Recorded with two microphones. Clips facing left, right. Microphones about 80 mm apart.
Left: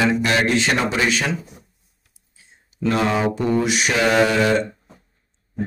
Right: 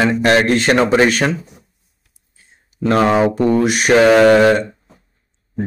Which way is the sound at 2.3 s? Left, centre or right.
Right.